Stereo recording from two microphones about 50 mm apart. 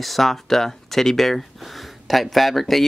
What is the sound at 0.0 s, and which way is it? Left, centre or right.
Speech, centre.